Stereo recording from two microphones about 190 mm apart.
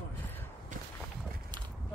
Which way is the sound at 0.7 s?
45° right (ahead or behind).